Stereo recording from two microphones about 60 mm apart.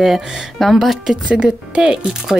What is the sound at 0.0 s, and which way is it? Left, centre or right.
Speech, centre.